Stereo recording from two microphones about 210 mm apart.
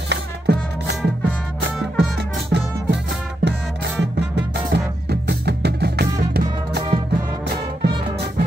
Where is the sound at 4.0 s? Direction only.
55° right (ahead or behind).